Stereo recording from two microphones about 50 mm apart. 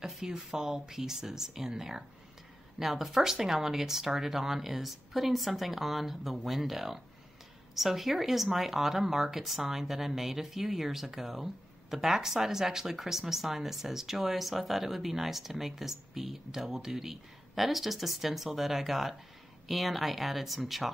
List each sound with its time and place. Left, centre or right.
0.0 s speech: centre